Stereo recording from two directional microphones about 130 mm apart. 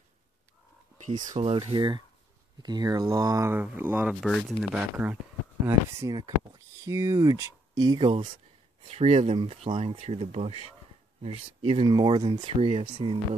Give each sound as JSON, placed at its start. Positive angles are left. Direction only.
{"t": 1.4, "sound": "speech", "side_deg": -50}
{"t": 4.1, "sound": "speech", "side_deg": 0}
{"t": 4.7, "sound": "speech", "side_deg": -15}
{"t": 5.7, "sound": "speech", "side_deg": -25}
{"t": 8.8, "sound": "speech", "side_deg": -50}
{"t": 11.9, "sound": "speech", "side_deg": -30}
{"t": 12.4, "sound": "speech", "side_deg": -55}